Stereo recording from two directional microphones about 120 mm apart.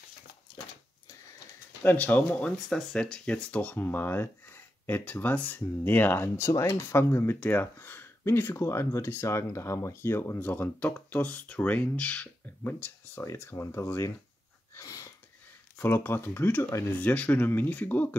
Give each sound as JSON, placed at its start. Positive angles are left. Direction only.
{"t": 1.8, "sound": "speech", "side_deg": 15}
{"t": 14.8, "sound": "a sound", "side_deg": 30}
{"t": 15.8, "sound": "speech", "side_deg": 20}